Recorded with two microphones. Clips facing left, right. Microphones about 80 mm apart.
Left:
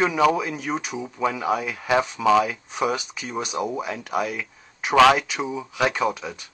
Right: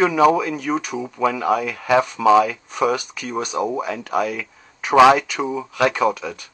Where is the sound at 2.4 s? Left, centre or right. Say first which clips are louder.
Right 4 dB; right.